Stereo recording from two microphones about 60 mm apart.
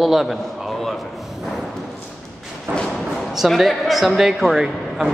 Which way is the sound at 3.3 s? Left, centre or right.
Centre.